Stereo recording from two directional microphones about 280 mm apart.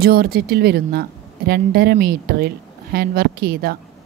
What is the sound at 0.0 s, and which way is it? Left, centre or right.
A woman's voice, right.